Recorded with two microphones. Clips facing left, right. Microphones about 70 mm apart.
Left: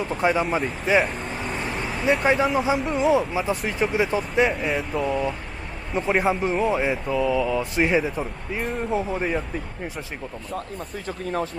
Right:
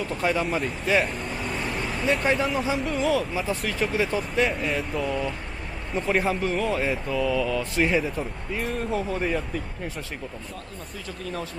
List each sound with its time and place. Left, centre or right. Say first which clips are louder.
0.0 s speech: left 3 dB; left
0.9 s vehicle: left 3 dB; centre
2.2 s speech: left 4 dB; centre
2.7 s speech: left 4 dB; centre
11.1 s speech: left 6 dB; left